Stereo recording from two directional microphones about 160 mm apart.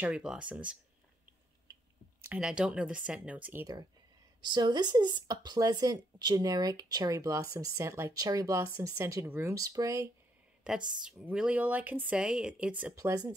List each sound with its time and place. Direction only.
0.0 s speech: 5° right (ahead or behind)
2.2 s speech: 10° right (ahead or behind)
4.4 s speech: 25° right (ahead or behind)
11.0 s speech: 5° right (ahead or behind)